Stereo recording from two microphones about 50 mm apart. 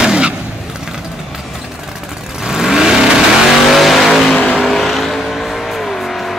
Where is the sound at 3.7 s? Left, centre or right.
Centre.